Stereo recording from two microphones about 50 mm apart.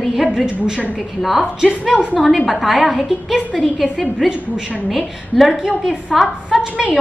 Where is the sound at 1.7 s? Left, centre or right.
Centre.